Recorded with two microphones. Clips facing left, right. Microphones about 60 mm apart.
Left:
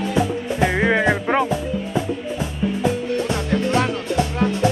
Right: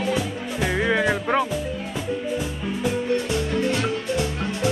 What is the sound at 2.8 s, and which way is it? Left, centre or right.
Music, left.